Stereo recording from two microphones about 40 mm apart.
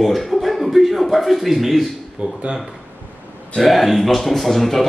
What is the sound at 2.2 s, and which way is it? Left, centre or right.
Speech, right.